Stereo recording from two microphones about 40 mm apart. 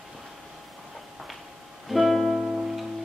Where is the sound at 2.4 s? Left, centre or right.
Centre.